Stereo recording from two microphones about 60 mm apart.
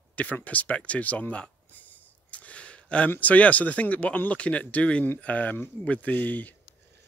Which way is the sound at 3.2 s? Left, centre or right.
Left.